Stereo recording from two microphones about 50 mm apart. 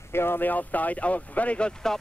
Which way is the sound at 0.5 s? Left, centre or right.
Left.